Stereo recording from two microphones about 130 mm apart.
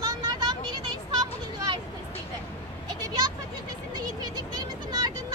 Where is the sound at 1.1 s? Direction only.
30° right (ahead or behind).